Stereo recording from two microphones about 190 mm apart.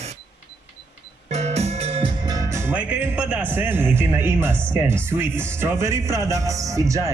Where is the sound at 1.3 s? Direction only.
35° right (ahead or behind).